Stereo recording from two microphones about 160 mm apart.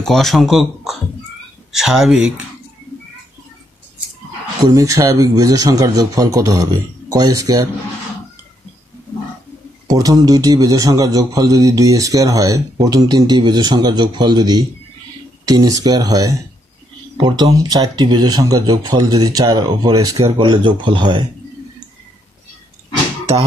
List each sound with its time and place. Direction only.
0.0 s speech: centre (ahead or behind)
4.6 s a man's voice: 20° right (ahead or behind)
9.8 s a man's voice: 25° right (ahead or behind)